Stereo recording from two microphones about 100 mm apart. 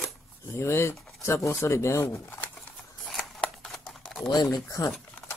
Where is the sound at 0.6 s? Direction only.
25° left (ahead or behind).